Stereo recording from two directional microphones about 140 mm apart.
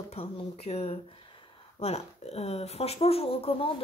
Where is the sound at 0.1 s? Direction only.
45° left (ahead or behind).